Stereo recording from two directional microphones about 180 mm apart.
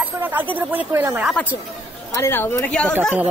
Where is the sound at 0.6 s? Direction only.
10° right (ahead or behind).